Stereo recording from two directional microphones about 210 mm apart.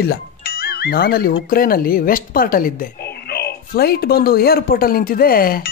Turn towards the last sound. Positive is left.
turn(degrees=45)  # may be behind; listen again after turning